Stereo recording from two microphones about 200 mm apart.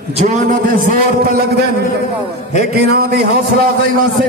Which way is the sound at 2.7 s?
50° right (ahead or behind).